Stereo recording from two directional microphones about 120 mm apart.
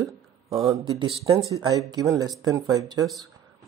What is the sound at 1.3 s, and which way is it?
Speech, 30° right (ahead or behind).